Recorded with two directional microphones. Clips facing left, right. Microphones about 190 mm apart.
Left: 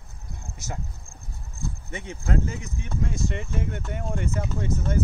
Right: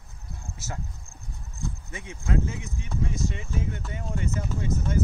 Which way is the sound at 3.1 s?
55° left (ahead or behind).